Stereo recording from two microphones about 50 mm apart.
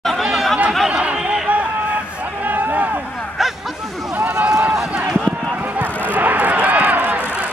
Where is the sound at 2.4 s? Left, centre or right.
Right.